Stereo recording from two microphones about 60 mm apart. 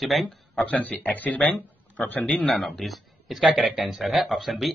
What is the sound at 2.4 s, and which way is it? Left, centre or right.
A man's voice, centre.